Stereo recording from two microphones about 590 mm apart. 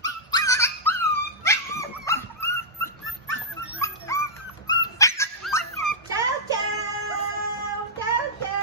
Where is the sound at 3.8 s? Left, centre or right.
Centre.